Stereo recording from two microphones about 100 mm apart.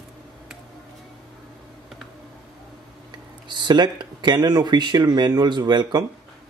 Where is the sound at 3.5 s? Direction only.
50° right (ahead or behind).